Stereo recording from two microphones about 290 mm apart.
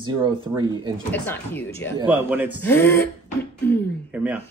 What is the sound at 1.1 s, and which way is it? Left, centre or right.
Speech, centre.